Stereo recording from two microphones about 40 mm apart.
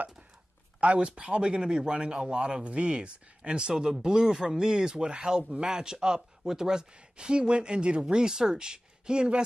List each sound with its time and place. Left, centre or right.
0.7 s speech: right